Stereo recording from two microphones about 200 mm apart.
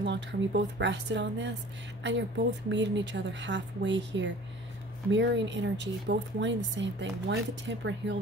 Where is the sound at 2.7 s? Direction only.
65° right (ahead or behind).